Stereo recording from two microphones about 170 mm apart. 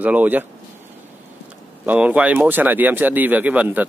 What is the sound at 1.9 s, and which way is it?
Speech, 10° right (ahead or behind).